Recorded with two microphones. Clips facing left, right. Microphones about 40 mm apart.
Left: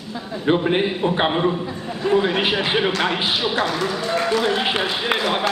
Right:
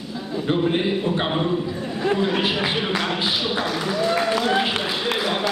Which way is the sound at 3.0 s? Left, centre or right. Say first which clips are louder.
Left 3 dB; left.